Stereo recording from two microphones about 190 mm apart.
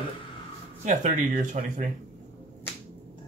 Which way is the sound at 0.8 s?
40° right (ahead or behind).